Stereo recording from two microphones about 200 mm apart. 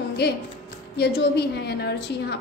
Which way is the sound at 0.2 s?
55° left (ahead or behind).